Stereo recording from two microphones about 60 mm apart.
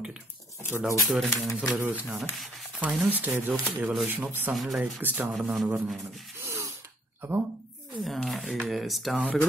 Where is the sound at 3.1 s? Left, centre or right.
Right.